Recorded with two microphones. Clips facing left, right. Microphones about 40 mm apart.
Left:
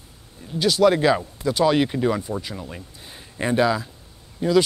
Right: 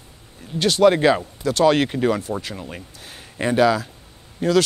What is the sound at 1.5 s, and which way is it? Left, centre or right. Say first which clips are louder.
Speech: right 2 dB; right.